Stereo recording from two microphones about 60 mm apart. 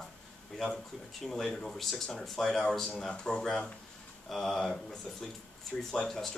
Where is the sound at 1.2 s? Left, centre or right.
Centre.